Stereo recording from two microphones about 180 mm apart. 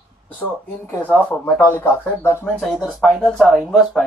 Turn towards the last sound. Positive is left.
turn(degrees=0)  # may be behind; listen again after turning